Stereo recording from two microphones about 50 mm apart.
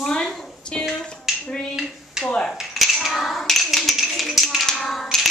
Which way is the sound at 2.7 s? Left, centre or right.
Centre.